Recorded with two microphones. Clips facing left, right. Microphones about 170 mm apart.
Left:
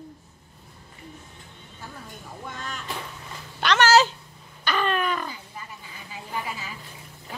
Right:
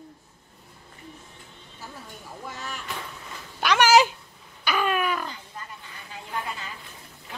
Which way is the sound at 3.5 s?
10° right (ahead or behind).